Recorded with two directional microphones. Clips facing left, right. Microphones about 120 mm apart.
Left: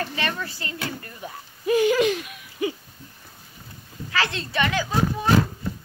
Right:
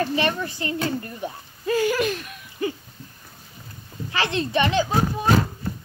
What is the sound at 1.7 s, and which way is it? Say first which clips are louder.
Hoot: left 3 dB; 20° left (ahead or behind).